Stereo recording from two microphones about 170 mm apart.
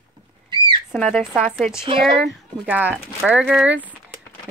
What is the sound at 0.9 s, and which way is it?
Speech, centre (ahead or behind).